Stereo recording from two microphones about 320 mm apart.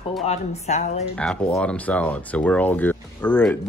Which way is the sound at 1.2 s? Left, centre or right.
Centre.